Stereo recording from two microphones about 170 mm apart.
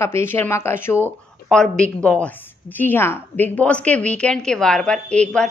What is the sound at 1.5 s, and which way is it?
A woman's voice, 5° left (ahead or behind).